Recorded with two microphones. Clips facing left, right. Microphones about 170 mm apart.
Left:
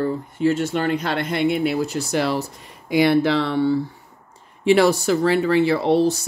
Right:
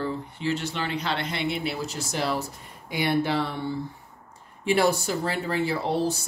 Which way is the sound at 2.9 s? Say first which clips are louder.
Left 8 dB; 90° left.